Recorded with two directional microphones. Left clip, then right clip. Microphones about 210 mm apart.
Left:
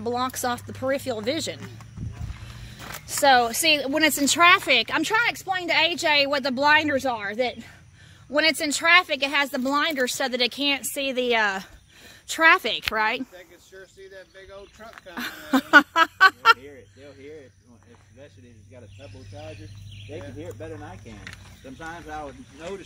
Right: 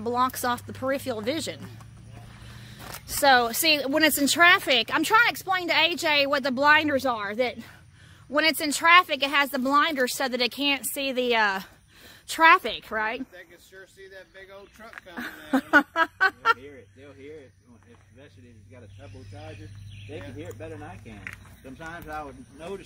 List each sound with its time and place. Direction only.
0.0 s speech: centre (ahead or behind)
5.1 s speech: 15° right (ahead or behind); by 13.2 s 5° left (ahead or behind)
13.4 s a sound: 50° right (ahead or behind)
15.1 s speech: centre (ahead or behind)
16.6 s speech: 45° right (ahead or behind)
20.1 s speech: 50° right (ahead or behind)